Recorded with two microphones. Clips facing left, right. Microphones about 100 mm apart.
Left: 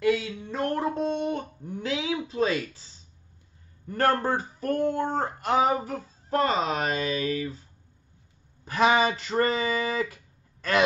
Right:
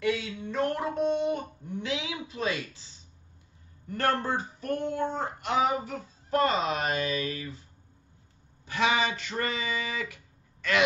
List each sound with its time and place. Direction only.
0.5 s a sound: 30° left (ahead or behind)
3.9 s speech: 45° left (ahead or behind)
6.3 s speech: 30° left (ahead or behind)
8.6 s speech: 35° left (ahead or behind)